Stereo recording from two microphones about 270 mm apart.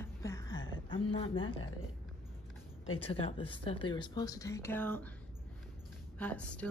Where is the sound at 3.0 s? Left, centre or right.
Centre.